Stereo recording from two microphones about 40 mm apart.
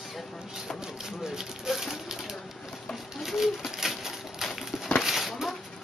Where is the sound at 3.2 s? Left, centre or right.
Centre.